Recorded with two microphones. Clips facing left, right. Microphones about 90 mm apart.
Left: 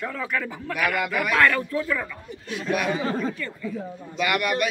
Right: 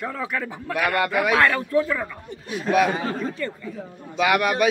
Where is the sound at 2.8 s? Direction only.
45° right (ahead or behind).